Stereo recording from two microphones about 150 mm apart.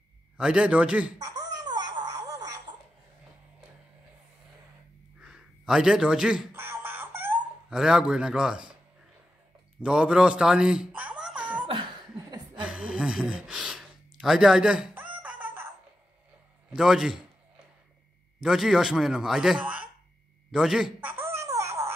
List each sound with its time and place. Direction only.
0.4 s a man's voice: 5° right (ahead or behind)
1.1 s a sound: 25° right (ahead or behind)
5.2 s a sound: 5° right (ahead or behind)
7.7 s speech: 5° right (ahead or behind)
9.8 s speech: 5° right (ahead or behind)
12.6 s gasp: 5° right (ahead or behind)
16.7 s speech: 5° right (ahead or behind)
18.4 s speech: centre (ahead or behind)
20.5 s a sound: 5° right (ahead or behind)